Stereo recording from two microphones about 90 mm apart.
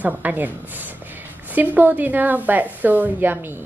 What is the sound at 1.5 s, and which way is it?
A woman's voice, 20° right (ahead or behind).